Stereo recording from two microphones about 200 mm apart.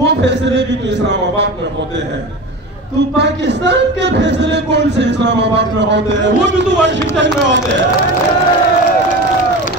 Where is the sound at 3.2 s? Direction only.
60° right (ahead or behind).